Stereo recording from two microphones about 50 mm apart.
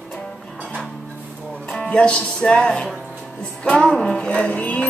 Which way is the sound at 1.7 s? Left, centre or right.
Centre.